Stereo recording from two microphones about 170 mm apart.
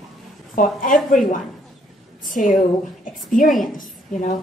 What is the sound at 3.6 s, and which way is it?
Speech, 50° left (ahead or behind).